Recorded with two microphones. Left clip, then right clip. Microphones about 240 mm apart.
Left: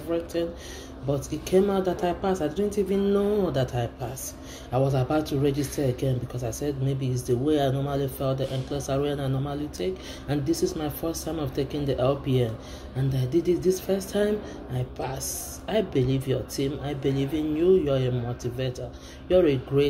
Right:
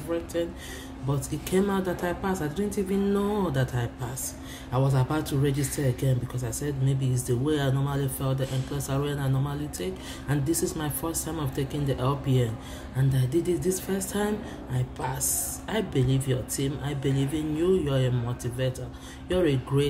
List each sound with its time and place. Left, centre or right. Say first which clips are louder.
0.1 s speech: left 2 dB; centre
1.5 s speech: left 4 dB; centre